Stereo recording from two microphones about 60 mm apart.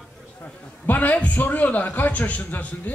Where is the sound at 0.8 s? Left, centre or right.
Left.